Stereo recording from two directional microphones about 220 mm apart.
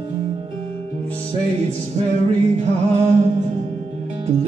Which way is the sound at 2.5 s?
30° right (ahead or behind).